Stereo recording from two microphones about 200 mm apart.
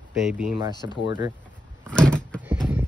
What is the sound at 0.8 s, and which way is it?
Speech, 15° right (ahead or behind).